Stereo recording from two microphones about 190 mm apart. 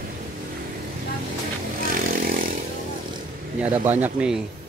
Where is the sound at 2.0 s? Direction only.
50° right (ahead or behind).